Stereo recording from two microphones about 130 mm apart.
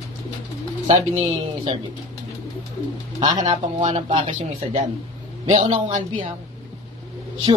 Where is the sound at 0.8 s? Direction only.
60° right (ahead or behind).